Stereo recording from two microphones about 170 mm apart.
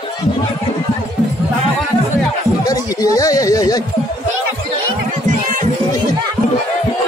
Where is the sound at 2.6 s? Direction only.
20° left (ahead or behind).